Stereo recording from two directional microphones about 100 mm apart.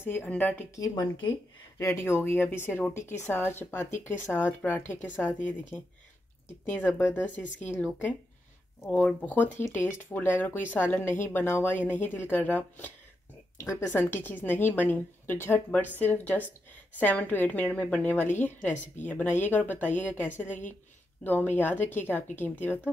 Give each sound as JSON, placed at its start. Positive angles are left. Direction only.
{"t": 0.3, "sound": "a woman's voice", "side_deg": 20}
{"t": 0.7, "sound": "a woman's voice", "side_deg": 40}
{"t": 1.8, "sound": "a woman's voice", "side_deg": 30}
{"t": 13.9, "sound": "a woman's voice", "side_deg": 20}